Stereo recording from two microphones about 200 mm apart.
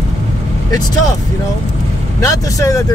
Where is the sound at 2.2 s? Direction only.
15° left (ahead or behind).